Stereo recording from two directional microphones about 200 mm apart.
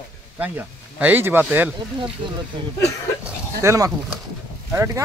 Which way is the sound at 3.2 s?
15° right (ahead or behind).